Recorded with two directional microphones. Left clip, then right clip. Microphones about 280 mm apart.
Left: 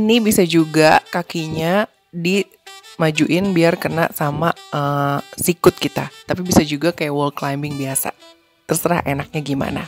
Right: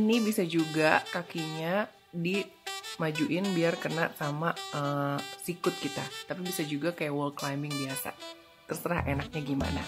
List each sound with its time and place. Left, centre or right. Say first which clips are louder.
0.0 s speech: left 13 dB; left